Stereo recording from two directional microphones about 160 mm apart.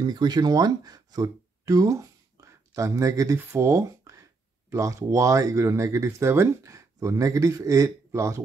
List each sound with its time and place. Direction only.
0.0 s speech: 25° right (ahead or behind)